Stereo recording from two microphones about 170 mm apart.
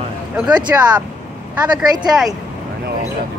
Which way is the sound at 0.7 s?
15° right (ahead or behind).